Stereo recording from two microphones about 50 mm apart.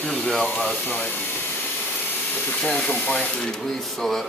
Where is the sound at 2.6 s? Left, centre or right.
Left.